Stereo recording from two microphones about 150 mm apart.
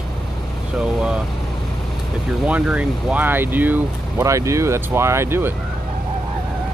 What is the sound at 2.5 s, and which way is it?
Speech, 10° right (ahead or behind).